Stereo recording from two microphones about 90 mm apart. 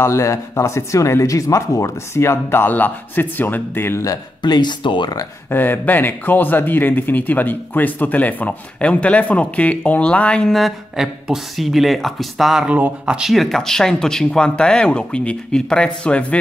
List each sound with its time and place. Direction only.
0.0 s speech: 35° left (ahead or behind)
4.4 s speech: 55° left (ahead or behind)
5.5 s speech: 20° left (ahead or behind); by 12.6 s centre (ahead or behind)
12.6 s speech: 15° right (ahead or behind); by 16.3 s 15° left (ahead or behind)